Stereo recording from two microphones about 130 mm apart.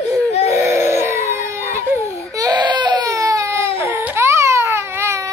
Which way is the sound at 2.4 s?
30° right (ahead or behind).